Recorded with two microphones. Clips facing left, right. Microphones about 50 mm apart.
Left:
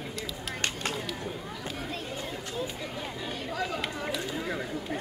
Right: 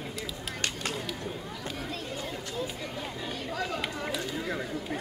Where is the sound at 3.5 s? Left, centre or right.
Centre.